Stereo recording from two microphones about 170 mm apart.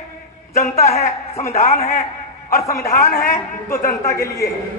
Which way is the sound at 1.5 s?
40° left (ahead or behind).